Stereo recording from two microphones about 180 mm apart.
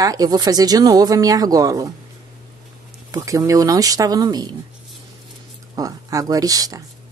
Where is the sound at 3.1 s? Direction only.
20° right (ahead or behind).